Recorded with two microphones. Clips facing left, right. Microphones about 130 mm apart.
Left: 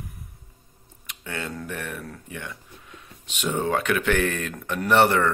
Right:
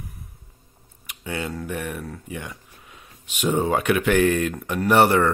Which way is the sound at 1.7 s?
15° right (ahead or behind).